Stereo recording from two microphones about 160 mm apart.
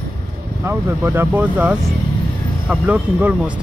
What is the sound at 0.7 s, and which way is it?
Speech, 15° right (ahead or behind).